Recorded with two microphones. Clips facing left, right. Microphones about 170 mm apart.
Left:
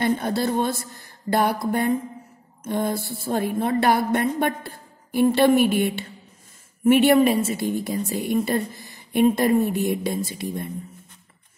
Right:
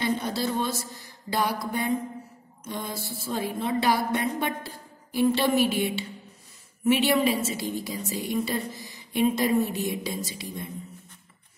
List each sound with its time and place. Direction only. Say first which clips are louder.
0.0 s a woman's voice: left 5 dB; 55° left (ahead or behind)
1.7 s mantra: left 5 dB; 55° left (ahead or behind)
2.6 s a woman's voice: left 9 dB; 55° left (ahead or behind)